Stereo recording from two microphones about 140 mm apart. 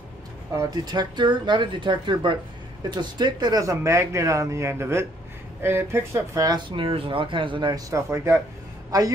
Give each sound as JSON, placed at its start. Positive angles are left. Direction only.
{"t": 0.6, "sound": "speech", "side_deg": -30}
{"t": 7.9, "sound": "speech", "side_deg": -20}